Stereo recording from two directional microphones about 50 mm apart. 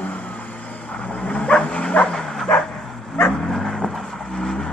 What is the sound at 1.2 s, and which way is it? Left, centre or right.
Bow-wow, centre.